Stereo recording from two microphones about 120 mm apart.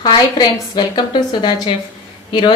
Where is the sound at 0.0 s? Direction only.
40° left (ahead or behind).